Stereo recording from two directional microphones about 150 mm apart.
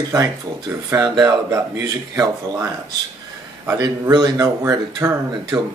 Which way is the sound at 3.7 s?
25° right (ahead or behind).